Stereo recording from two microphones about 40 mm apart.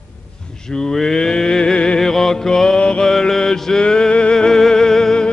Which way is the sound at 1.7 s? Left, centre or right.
Left.